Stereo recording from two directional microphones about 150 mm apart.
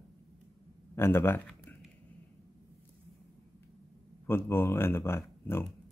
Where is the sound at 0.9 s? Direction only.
15° left (ahead or behind).